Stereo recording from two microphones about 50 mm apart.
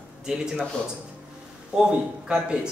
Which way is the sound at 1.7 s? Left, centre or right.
Centre.